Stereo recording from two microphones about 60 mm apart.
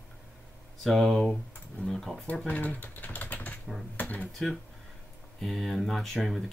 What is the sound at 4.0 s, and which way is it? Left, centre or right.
Dishes, left.